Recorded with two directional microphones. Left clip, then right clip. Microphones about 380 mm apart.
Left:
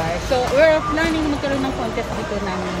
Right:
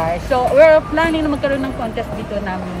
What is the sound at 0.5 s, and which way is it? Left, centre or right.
Speech, centre.